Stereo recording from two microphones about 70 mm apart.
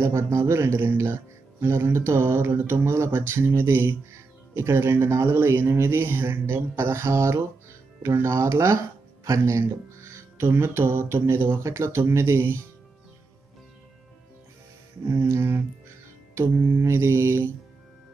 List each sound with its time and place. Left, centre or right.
0.0 s speech: right
15.0 s speech: right
16.8 s speech: right